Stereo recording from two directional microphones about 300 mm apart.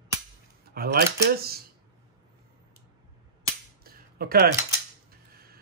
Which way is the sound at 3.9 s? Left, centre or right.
Right.